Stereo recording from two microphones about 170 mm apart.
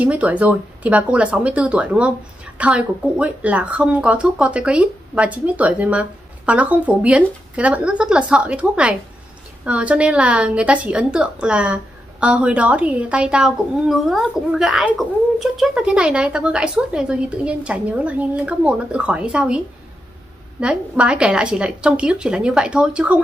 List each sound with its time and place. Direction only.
0.0 s speech: 10° right (ahead or behind)
20.6 s speech: 5° right (ahead or behind)